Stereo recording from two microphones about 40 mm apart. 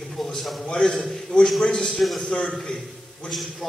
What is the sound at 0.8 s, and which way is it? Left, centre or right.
Speech, centre.